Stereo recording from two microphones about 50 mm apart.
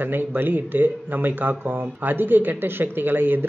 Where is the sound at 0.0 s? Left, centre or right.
Right.